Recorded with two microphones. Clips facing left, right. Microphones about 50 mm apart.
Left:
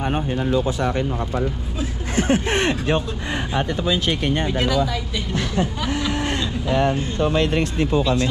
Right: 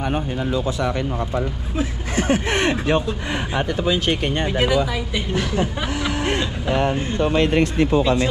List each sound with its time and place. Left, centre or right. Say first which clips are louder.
0.0 s speech: left 1 dB; centre
0.6 s speech: even; left
1.8 s speech: right 1 dB; right
3.5 s speech: right 1 dB; right
5.3 s speech: even; right
7.5 s speech: right 3 dB; right